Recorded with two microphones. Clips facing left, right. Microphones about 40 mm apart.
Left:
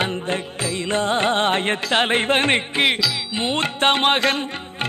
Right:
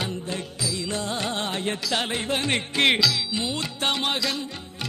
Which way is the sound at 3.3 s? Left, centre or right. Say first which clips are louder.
Left 6 dB; left.